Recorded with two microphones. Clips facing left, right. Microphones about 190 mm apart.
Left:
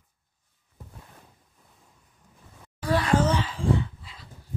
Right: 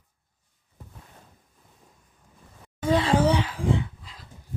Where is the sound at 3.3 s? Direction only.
15° right (ahead or behind).